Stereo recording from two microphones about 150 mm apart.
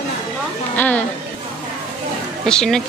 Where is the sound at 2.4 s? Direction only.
5° left (ahead or behind).